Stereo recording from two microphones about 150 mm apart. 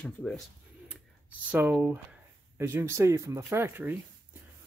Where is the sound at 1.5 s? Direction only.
10° right (ahead or behind).